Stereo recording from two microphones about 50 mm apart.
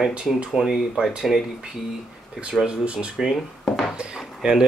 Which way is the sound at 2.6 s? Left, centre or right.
Right.